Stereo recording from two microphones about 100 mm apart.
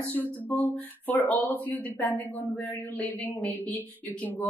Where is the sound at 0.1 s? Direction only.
15° left (ahead or behind).